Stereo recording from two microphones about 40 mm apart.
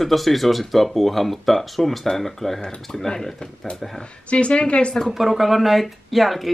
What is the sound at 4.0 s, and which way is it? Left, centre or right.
Speech, left.